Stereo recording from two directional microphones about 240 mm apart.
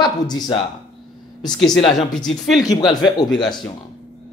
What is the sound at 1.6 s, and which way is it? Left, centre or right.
Speech, centre.